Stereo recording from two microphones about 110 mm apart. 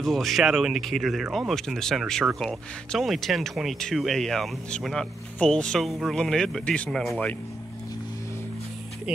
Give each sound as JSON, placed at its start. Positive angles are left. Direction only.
{"t": 0.0, "sound": "speech", "side_deg": 0}